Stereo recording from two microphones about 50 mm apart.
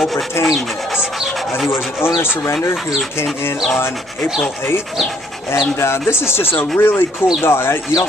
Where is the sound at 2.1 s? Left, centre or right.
Left.